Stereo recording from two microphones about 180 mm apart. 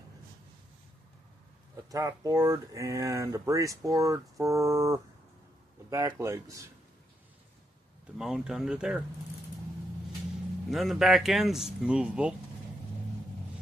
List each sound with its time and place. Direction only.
1.9 s speech: 20° right (ahead or behind)
8.2 s speech: 5° right (ahead or behind)
10.7 s speech: centre (ahead or behind)